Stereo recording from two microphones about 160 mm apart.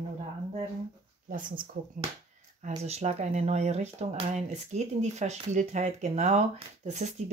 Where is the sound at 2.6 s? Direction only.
45° right (ahead or behind).